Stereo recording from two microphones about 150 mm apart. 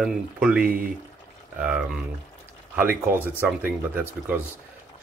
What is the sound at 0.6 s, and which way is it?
Speech, 75° right (ahead or behind).